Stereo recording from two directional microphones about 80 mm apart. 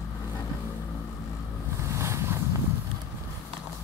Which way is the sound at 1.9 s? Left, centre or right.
Right.